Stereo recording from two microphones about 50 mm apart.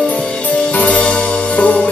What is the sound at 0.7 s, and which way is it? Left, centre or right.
Music, left.